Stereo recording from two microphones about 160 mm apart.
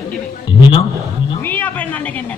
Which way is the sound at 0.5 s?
30° left (ahead or behind).